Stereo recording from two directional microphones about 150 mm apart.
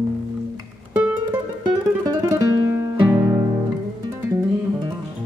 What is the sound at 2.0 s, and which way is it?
Music, 25° right (ahead or behind).